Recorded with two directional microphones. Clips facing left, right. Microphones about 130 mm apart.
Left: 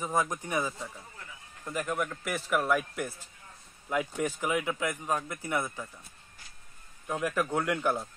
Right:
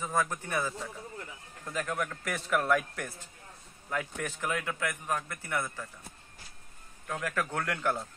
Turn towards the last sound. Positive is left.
turn(degrees=15)  # may be behind; listen again after turning